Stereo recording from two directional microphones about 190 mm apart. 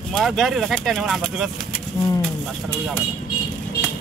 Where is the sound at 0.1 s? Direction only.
Centre (ahead or behind).